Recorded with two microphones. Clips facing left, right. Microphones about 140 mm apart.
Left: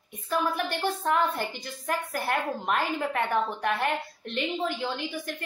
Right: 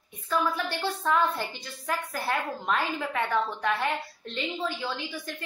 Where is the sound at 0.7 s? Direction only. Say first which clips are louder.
Even; 20° left (ahead or behind).